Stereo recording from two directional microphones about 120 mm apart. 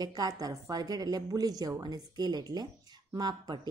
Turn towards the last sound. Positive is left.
turn(degrees=-35)  # may be behind; listen again after turning